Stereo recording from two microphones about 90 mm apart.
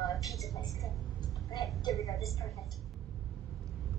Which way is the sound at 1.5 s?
45° left (ahead or behind).